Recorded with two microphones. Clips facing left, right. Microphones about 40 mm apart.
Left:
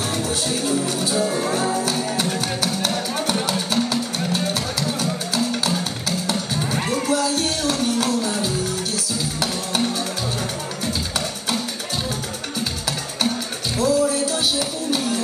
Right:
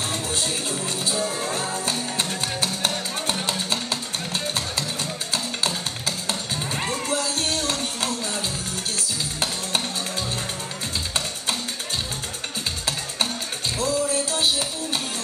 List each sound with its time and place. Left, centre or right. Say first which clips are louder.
1.2 s music: left 5 dB; centre
3.4 s music: left 4 dB; right